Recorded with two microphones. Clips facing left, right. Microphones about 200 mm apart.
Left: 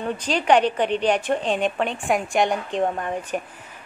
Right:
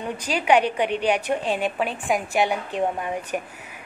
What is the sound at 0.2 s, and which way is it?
Speech, 10° right (ahead or behind).